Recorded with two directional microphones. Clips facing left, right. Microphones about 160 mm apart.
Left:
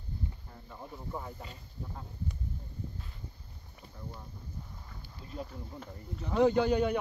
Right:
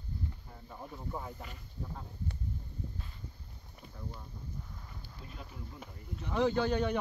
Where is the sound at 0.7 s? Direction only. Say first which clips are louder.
Even; 5° right (ahead or behind).